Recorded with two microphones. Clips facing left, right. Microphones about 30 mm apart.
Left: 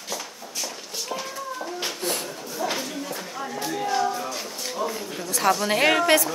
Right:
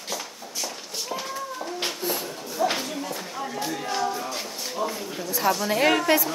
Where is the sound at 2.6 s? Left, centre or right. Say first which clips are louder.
Right 4 dB; centre.